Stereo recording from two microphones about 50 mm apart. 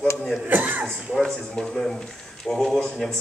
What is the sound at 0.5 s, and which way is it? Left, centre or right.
Speech, right.